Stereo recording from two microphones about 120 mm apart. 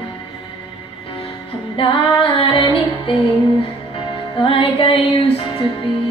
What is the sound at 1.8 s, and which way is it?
Female singing, 50° left (ahead or behind).